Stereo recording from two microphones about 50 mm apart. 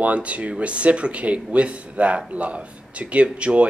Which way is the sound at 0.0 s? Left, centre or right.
Right.